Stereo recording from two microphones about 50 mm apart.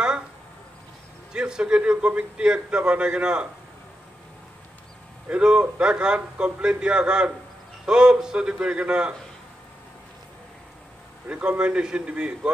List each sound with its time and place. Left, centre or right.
1.3 s a man's voice: centre
5.3 s a man's voice: centre
11.2 s a man's voice: right